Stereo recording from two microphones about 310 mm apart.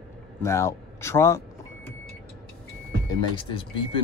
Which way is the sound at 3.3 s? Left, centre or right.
Centre.